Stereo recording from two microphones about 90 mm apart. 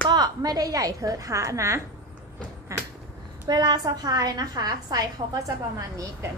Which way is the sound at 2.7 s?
35° right (ahead or behind).